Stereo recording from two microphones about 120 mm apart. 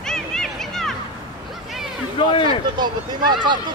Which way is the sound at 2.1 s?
45° left (ahead or behind).